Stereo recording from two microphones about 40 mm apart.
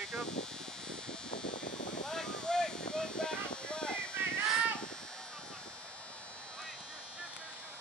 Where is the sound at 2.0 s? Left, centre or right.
Centre.